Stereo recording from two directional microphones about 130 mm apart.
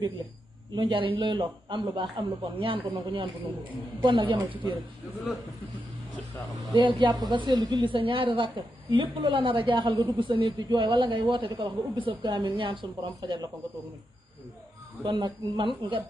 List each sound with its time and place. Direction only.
0.7 s a woman's voice: 40° right (ahead or behind)
6.5 s a woman's voice: 40° right (ahead or behind)
15.0 s a woman's voice: 40° right (ahead or behind)